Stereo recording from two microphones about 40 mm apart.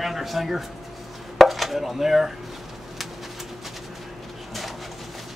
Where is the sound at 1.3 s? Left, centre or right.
Centre.